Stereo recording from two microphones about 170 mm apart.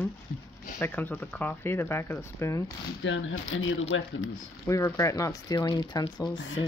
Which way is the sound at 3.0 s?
90° left.